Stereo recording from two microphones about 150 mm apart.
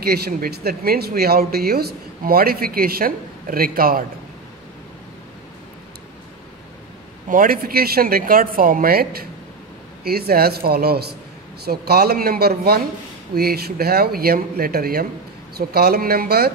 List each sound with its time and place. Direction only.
0.0 s speech: 90° right; by 4.0 s 75° right (ahead or behind)
7.2 s speech: 70° right (ahead or behind); by 16.5 s 90° right